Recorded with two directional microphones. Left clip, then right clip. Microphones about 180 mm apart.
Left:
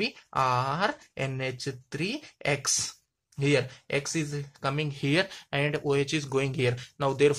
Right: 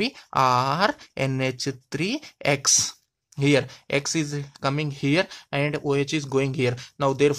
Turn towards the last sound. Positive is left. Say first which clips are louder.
# right 3 dB
turn(degrees=-30)  # may be behind; listen again after turning